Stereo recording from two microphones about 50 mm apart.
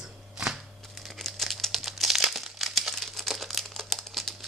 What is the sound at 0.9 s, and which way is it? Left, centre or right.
Crumpling, centre.